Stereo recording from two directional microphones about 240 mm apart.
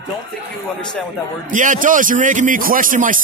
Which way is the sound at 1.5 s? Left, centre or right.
Right.